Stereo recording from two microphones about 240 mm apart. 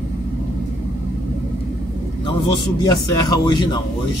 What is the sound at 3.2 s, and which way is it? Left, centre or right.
Speech, centre.